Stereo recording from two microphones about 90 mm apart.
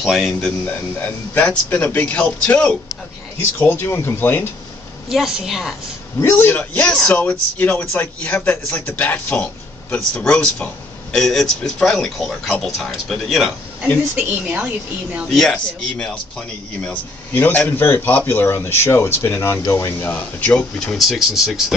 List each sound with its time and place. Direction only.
0.0 s speech: 5° left (ahead or behind)
0.7 s a man's voice: 20° left (ahead or behind)
3.3 s a man's voice: 25° left (ahead or behind)
5.1 s speech: 5° right (ahead or behind)
6.2 s a man's voice: 25° left (ahead or behind)
6.9 s speech: 5° left (ahead or behind)
7.2 s a man's voice: 20° left (ahead or behind); by 13.5 s centre (ahead or behind)
14.1 s speech: 15° right (ahead or behind)
15.3 s a man's voice: 10° left (ahead or behind)
20.8 s speech: centre (ahead or behind)